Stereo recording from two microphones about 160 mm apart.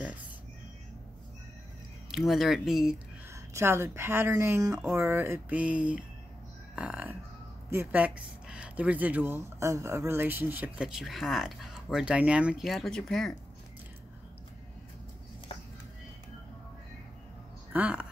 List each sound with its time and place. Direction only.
2.0 s speech: centre (ahead or behind)
3.5 s speech: 15° right (ahead or behind); by 13.4 s 5° left (ahead or behind)
17.7 s speech: 10° right (ahead or behind)